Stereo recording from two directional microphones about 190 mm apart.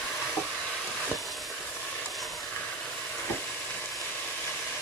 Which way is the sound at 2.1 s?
Centre (ahead or behind).